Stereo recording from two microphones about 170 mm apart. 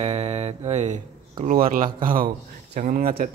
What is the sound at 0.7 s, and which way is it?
Mantra, 40° right (ahead or behind).